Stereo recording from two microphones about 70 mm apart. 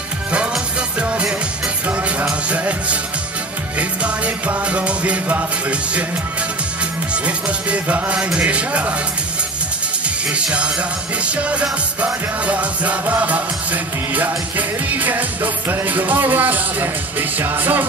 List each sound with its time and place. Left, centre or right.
0.9 s music: centre
2.5 s music: centre
7.2 s speech: centre
10.3 s speech: centre
12.0 s music: centre
14.9 s music: right